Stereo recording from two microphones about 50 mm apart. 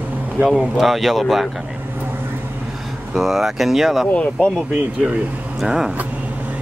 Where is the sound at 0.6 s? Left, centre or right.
Centre.